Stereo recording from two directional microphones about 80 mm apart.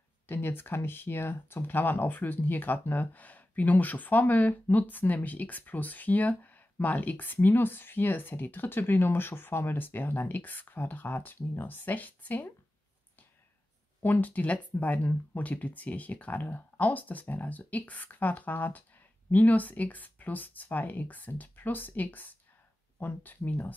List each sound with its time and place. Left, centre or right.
0.3 s speech: left
14.0 s speech: left